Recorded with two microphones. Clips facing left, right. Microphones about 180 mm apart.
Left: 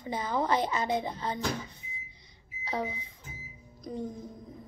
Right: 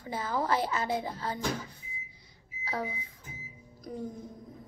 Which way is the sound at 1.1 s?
5° right (ahead or behind).